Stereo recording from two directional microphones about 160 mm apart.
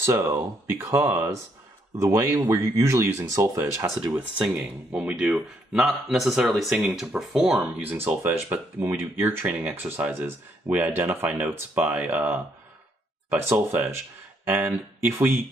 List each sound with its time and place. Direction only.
0.0 s speech: 15° right (ahead or behind)